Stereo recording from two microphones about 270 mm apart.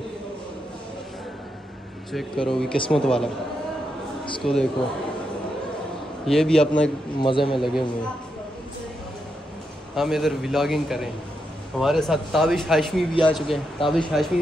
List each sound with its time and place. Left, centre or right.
2.1 s speech: centre
4.4 s speech: centre
6.2 s speech: centre
7.2 s a man's voice: centre
7.5 s speech: centre
9.9 s speech: centre